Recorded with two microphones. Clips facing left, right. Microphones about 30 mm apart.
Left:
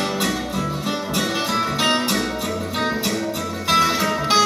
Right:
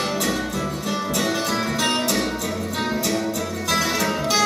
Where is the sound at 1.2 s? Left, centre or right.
Centre.